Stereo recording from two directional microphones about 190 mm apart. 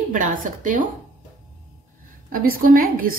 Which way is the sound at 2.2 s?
50° right (ahead or behind).